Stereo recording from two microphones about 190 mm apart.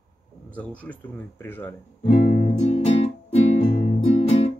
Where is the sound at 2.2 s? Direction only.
45° left (ahead or behind).